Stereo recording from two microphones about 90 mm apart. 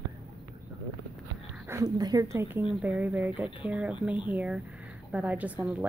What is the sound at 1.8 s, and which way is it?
Speech, 45° right (ahead or behind).